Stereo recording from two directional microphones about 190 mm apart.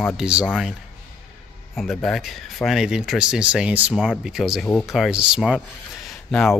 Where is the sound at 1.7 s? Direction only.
Centre (ahead or behind).